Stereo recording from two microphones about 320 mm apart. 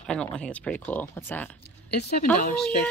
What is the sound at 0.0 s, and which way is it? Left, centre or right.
A woman's voice, centre.